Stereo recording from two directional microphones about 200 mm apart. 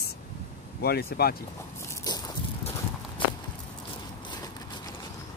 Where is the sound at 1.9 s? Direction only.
20° left (ahead or behind).